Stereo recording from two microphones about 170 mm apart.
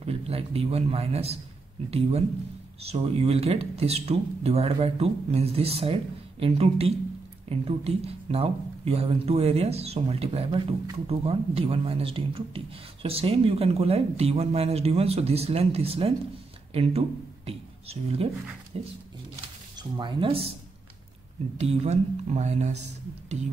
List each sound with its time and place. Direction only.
0.0 s a man's voice: 35° right (ahead or behind)
20.0 s speech: 30° right (ahead or behind)
21.5 s speech: 40° right (ahead or behind)